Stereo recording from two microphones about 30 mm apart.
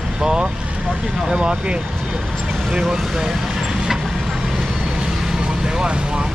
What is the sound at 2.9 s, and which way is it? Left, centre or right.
Vehicle, centre.